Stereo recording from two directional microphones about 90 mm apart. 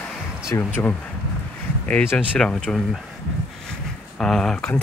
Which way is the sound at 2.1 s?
10° left (ahead or behind).